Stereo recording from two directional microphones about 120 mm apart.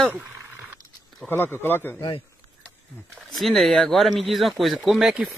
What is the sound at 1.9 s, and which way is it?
Speech, 50° left (ahead or behind).